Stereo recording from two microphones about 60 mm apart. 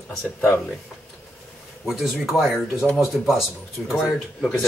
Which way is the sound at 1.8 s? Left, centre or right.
Centre.